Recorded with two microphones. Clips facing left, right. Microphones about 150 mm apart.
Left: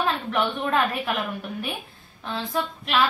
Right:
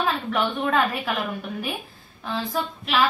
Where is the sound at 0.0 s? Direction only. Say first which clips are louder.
Even; centre (ahead or behind).